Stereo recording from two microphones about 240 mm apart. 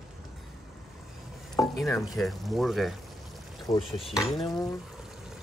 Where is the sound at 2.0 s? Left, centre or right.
Centre.